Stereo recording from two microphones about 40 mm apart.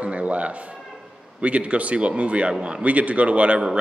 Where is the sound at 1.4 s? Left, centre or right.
Right.